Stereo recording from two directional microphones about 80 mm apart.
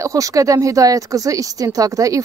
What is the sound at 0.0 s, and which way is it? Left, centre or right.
Speech, right.